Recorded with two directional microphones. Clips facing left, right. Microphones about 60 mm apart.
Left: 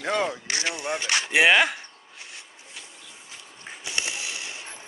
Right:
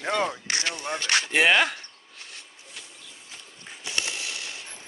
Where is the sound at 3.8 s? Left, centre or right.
Left.